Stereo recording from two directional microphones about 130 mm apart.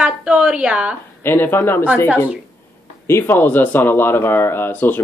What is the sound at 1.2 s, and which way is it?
Speech, 15° left (ahead or behind).